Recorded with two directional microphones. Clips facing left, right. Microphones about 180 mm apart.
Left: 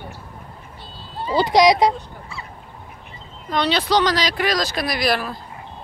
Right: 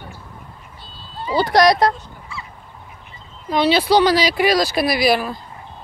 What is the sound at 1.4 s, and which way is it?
Speech, 15° left (ahead or behind).